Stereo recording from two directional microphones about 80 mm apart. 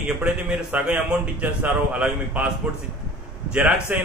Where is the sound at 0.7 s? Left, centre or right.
Right.